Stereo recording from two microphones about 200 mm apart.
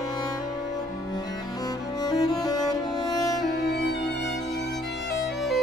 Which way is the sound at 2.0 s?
20° left (ahead or behind).